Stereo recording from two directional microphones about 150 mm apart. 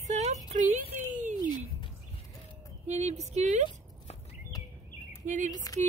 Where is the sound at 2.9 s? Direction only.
50° right (ahead or behind).